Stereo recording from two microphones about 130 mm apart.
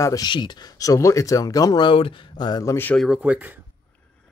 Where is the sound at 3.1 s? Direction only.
10° right (ahead or behind).